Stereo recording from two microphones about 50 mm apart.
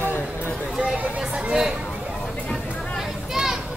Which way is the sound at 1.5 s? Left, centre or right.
Centre.